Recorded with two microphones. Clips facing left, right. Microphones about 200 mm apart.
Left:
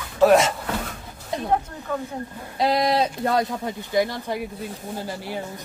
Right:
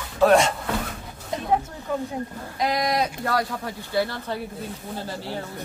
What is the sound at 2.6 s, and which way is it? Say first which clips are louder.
A woman's voice: left 3 dB; 30° left (ahead or behind).